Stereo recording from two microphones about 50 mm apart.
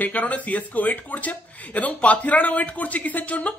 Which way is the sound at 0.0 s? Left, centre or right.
Left.